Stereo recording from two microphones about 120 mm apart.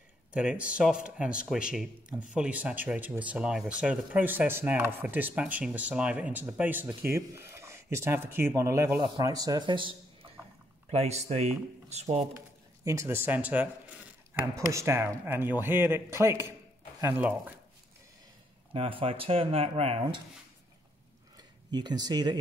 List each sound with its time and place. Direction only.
0.3 s a man's voice: 10° right (ahead or behind); by 10.3 s 45° right (ahead or behind)
10.9 s speech: 65° right (ahead or behind)
12.8 s speech: 25° right (ahead or behind)
14.6 s speech: 25° right (ahead or behind)
18.7 s speech: 50° right (ahead or behind)
21.4 s speech: 35° right (ahead or behind)